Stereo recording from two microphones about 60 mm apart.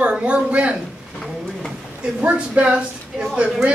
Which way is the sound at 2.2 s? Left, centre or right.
Centre.